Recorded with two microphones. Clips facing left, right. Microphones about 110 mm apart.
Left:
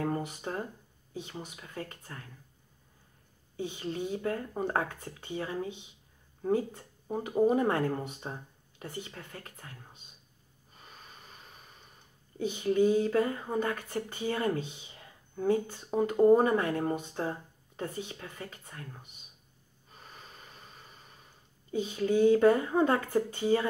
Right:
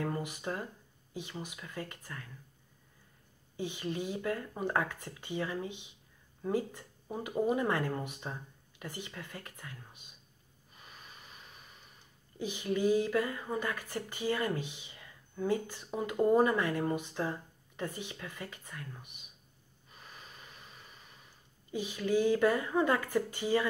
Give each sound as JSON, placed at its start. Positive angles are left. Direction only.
{"t": 0.0, "sound": "speech", "side_deg": 25}
{"t": 3.6, "sound": "speech", "side_deg": 25}
{"t": 10.7, "sound": "a sound", "side_deg": 35}
{"t": 12.4, "sound": "speech", "side_deg": 30}
{"t": 19.9, "sound": "snort", "side_deg": 35}
{"t": 21.7, "sound": "speech", "side_deg": 25}